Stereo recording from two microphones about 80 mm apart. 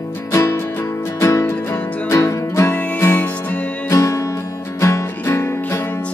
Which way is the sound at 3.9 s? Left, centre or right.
Left.